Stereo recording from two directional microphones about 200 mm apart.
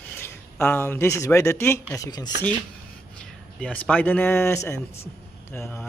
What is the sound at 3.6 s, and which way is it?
Speech, 5° left (ahead or behind).